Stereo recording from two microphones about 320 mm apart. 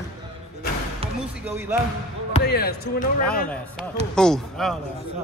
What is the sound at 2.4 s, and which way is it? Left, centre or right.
Speech, left.